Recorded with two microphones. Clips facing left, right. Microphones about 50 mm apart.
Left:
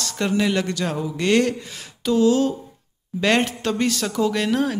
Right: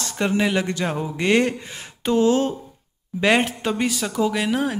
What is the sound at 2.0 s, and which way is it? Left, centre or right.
Speech, right.